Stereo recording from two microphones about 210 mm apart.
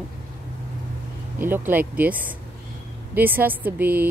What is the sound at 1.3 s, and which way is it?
Speech, 10° right (ahead or behind).